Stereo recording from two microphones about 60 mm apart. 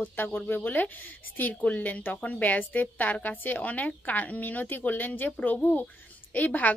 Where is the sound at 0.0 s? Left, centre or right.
Left.